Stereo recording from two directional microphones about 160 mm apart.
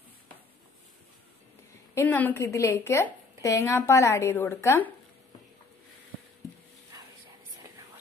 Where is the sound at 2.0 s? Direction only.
10° left (ahead or behind).